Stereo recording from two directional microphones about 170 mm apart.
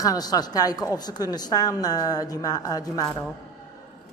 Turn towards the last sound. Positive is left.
turn(degrees=20)  # may be behind; listen again after turning